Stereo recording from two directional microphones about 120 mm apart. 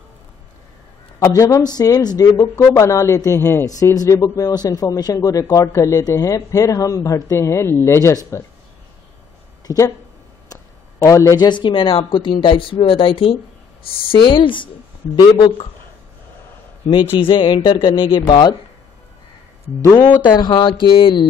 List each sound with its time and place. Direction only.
1.2 s speech: 25° left (ahead or behind)
9.7 s speech: 30° left (ahead or behind)
17.2 s speech: 40° left (ahead or behind)
19.8 s speech: 30° left (ahead or behind)